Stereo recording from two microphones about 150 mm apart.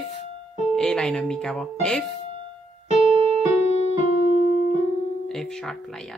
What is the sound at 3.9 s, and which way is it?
Music, 50° left (ahead or behind).